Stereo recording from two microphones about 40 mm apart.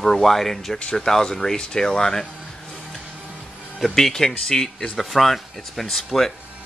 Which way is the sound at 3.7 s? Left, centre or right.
Centre.